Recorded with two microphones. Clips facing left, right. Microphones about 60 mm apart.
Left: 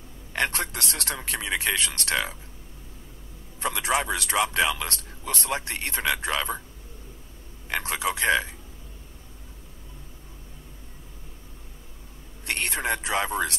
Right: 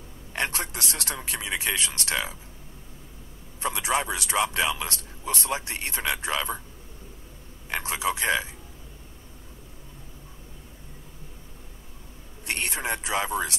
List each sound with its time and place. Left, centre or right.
0.3 s speech: left
3.6 s speech: left
7.7 s a man's voice: left
12.4 s a man's voice: left